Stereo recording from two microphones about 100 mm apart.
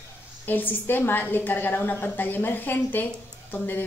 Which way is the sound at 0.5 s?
20° left (ahead or behind).